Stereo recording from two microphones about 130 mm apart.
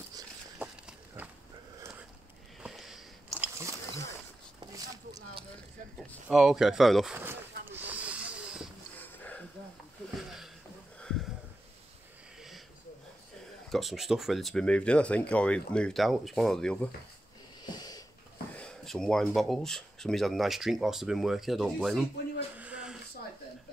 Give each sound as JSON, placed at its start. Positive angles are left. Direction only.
{"t": 0.6, "sound": "a sound", "side_deg": -10}
{"t": 2.6, "sound": "biting", "side_deg": 0}
{"t": 3.5, "sound": "biting", "side_deg": -20}
{"t": 6.2, "sound": "speech", "side_deg": -5}
{"t": 7.2, "sound": "snake", "side_deg": -15}
{"t": 9.0, "sound": "a sound", "side_deg": 15}
{"t": 11.0, "sound": "sniff", "side_deg": 5}
{"t": 12.4, "sound": "sniff", "side_deg": 0}
{"t": 13.7, "sound": "speech", "side_deg": 0}
{"t": 17.6, "sound": "sniff", "side_deg": 30}
{"t": 18.6, "sound": "speech", "side_deg": 5}
{"t": 22.6, "sound": "a sound", "side_deg": -10}